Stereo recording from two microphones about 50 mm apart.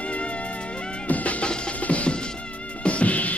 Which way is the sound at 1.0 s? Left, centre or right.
Left.